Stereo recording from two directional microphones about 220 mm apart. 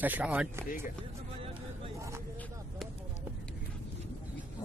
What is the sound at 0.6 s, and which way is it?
Speech, 40° left (ahead or behind).